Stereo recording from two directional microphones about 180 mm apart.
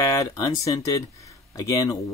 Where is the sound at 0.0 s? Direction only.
20° left (ahead or behind).